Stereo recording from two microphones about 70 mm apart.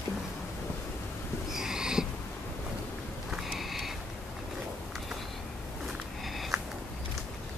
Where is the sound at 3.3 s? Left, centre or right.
Centre.